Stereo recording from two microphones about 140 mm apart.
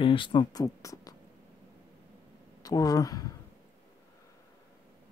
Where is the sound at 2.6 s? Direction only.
25° left (ahead or behind).